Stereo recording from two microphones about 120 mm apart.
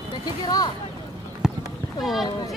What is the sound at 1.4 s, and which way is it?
Clip-clop, 5° right (ahead or behind).